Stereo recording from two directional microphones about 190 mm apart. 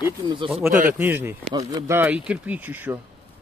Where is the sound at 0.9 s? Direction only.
10° right (ahead or behind).